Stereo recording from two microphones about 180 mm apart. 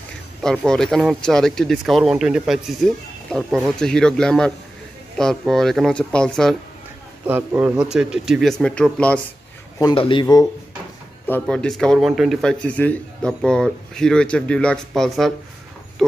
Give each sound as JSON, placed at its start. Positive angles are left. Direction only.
{"t": 0.4, "sound": "speech", "side_deg": 5}
{"t": 7.2, "sound": "speech", "side_deg": -10}
{"t": 9.8, "sound": "speech", "side_deg": 25}
{"t": 11.2, "sound": "speech", "side_deg": 5}